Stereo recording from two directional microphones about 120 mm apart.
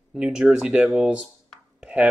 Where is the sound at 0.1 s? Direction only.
5° right (ahead or behind).